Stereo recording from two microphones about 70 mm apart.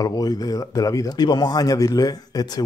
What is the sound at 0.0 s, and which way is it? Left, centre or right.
Speech, left.